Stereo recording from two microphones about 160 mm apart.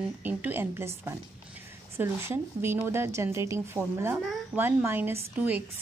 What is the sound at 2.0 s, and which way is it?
A woman's voice, 15° right (ahead or behind).